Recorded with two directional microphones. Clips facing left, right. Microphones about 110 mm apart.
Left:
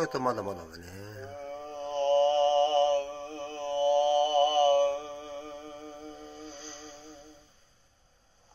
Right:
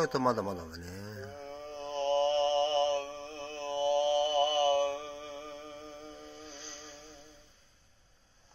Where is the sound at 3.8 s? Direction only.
45° left (ahead or behind).